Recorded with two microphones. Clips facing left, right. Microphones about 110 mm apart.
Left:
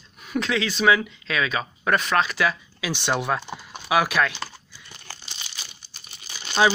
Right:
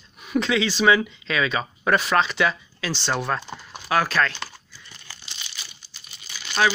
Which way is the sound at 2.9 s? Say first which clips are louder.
Left 1 dB; 15° left (ahead or behind).